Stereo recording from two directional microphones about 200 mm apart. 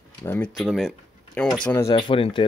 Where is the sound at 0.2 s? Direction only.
10° left (ahead or behind).